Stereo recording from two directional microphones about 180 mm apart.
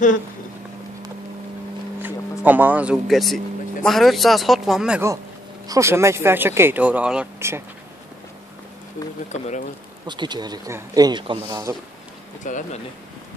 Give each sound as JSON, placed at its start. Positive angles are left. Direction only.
{"t": 2.4, "sound": "speech", "side_deg": -10}
{"t": 5.7, "sound": "speech", "side_deg": -15}
{"t": 10.0, "sound": "speech", "side_deg": -25}
{"t": 12.4, "sound": "speech", "side_deg": 45}